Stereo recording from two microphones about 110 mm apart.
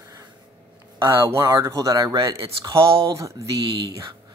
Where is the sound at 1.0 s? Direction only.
25° right (ahead or behind).